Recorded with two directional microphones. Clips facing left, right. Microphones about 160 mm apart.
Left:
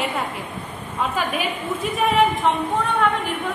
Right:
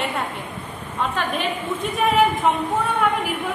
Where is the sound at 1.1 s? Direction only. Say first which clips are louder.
Even; 5° left (ahead or behind).